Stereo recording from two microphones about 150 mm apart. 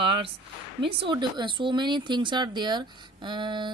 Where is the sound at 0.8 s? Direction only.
35° right (ahead or behind).